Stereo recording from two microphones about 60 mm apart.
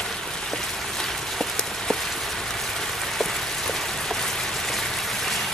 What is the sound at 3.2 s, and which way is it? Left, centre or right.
Rain, centre.